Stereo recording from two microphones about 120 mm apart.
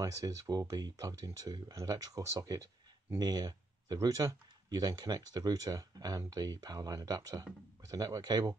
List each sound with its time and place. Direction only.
0.0 s speech: 25° right (ahead or behind)